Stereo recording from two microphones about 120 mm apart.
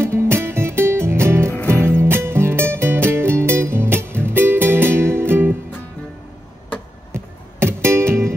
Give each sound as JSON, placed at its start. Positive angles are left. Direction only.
{"t": 0.0, "sound": "music", "side_deg": -20}
{"t": 1.5, "sound": "music", "side_deg": 15}
{"t": 1.9, "sound": "music", "side_deg": -20}
{"t": 7.2, "sound": "music", "side_deg": -20}